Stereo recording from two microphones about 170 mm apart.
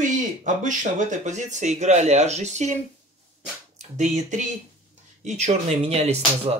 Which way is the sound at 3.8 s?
45° right (ahead or behind).